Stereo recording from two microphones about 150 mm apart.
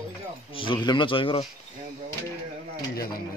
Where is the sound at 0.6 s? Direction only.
30° left (ahead or behind).